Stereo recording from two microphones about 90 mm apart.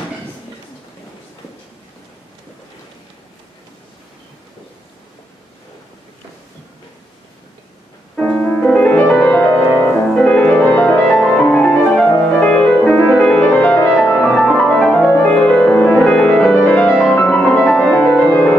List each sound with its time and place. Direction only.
8.2 s music: 10° left (ahead or behind)
9.3 s music: 30° left (ahead or behind)
10.1 s music: 10° left (ahead or behind)